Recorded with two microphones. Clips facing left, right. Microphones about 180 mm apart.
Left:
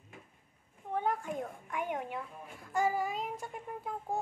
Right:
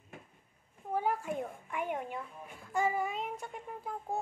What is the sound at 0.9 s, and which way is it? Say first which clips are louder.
A child's voice: right 1 dB; 5° right (ahead or behind).